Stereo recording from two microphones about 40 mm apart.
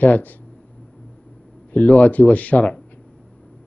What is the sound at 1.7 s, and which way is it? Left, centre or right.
A man's voice, left.